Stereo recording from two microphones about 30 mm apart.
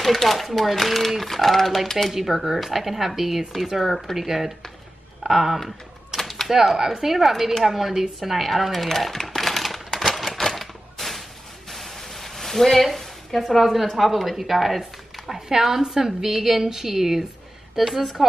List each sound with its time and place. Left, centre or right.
0.0 s speech: centre
2.1 s speech: centre
6.1 s a sound: centre
6.5 s speech: centre
9.5 s typewriter: centre
11.0 s a sound: centre
14.4 s speech: centre
15.2 s speech: centre